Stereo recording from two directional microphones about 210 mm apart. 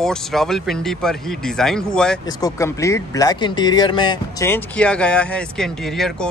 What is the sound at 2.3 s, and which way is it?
Speech, 15° left (ahead or behind).